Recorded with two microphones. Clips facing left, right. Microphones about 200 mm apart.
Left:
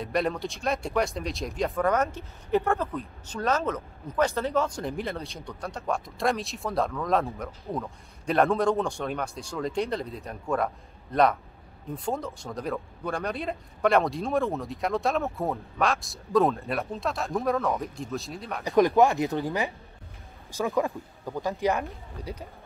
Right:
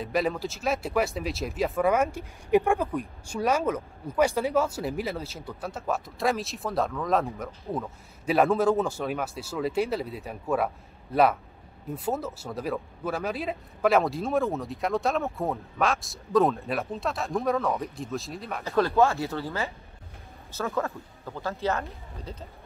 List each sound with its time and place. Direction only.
0.0 s speech: centre (ahead or behind)
18.6 s speech: 15° left (ahead or behind)